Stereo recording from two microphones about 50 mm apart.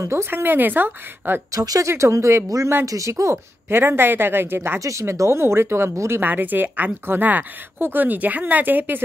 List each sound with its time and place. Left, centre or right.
0.0 s speech: right
0.3 s speech: right
1.8 s speech: right
2.8 s speech: right
3.6 s speech: right
4.7 s speech: right
6.2 s a woman's voice: right